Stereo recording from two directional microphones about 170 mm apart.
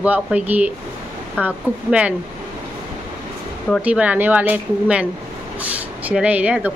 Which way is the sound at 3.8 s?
10° right (ahead or behind).